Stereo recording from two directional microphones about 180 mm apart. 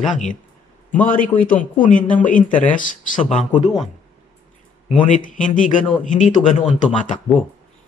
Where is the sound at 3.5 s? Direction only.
25° left (ahead or behind).